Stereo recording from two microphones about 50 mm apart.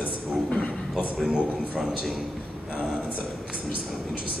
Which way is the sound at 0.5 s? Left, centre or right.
Left.